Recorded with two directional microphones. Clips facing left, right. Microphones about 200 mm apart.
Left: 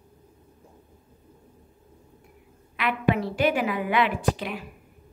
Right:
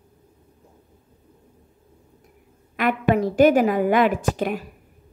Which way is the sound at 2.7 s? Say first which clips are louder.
Right 5 dB; 45° right (ahead or behind).